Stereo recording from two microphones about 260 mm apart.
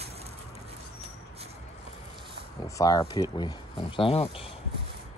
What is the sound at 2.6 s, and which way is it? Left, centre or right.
Speech, centre.